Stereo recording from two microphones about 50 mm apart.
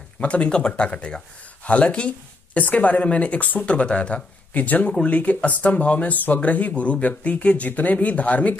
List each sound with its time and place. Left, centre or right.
0.2 s speech: left
4.6 s speech: left